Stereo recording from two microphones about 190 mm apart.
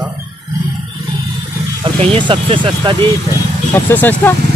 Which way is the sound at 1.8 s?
25° right (ahead or behind).